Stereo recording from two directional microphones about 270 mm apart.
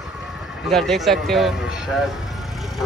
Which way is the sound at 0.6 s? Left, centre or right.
Centre.